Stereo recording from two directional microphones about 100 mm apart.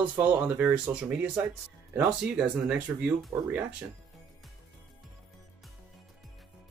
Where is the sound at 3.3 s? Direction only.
25° right (ahead or behind).